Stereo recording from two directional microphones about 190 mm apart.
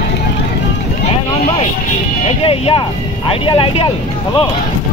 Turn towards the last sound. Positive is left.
turn(degrees=30)  # may be behind; listen again after turning